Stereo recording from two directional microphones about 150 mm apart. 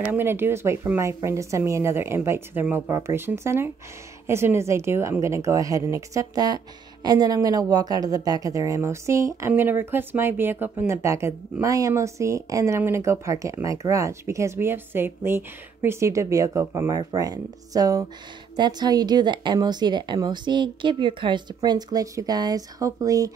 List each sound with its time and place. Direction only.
0.0 s speech: 10° right (ahead or behind)